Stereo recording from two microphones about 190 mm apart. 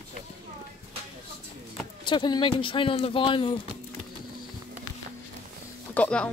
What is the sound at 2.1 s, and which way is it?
Speech, 25° left (ahead or behind).